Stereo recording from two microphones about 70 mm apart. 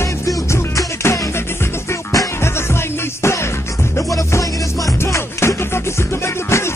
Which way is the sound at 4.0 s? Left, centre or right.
Left.